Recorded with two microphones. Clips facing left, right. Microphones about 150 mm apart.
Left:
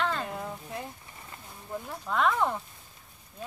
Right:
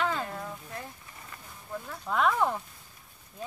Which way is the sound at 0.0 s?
5° right (ahead or behind).